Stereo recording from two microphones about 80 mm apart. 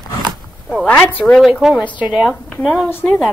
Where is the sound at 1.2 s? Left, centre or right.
Centre.